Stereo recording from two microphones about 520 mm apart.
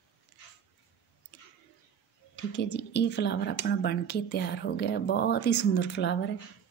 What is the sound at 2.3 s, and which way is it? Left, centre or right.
Speech, centre.